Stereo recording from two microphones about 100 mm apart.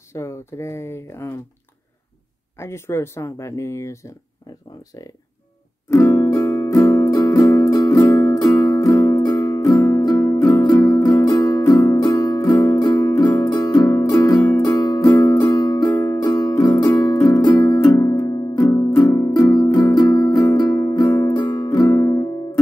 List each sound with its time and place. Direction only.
0.1 s speech: 30° left (ahead or behind)
2.5 s speech: 25° left (ahead or behind)
5.9 s music: 30° left (ahead or behind)
9.2 s music: 40° left (ahead or behind)
12.4 s music: 20° left (ahead or behind)
13.4 s music: 35° left (ahead or behind)
15.4 s music: 45° left (ahead or behind)
16.0 s music: 30° left (ahead or behind)
16.3 s music: 40° left (ahead or behind)
21.4 s music: 50° left (ahead or behind); by 22.3 s 30° left (ahead or behind)